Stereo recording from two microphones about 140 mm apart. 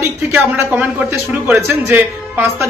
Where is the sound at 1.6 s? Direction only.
15° right (ahead or behind).